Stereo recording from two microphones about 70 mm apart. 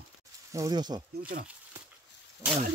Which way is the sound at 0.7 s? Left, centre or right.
Right.